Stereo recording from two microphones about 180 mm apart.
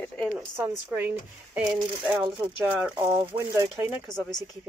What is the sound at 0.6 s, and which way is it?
Speech, 10° right (ahead or behind).